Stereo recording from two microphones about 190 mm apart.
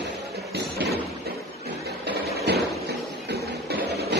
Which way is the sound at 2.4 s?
60° right (ahead or behind).